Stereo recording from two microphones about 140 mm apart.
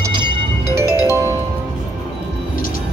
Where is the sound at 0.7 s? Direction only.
20° right (ahead or behind).